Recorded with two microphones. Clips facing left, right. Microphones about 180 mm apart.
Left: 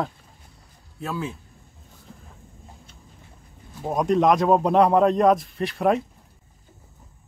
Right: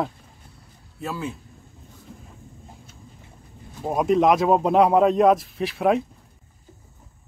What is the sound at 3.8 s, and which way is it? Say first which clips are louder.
Speech: right 1 dB; 5° right (ahead or behind).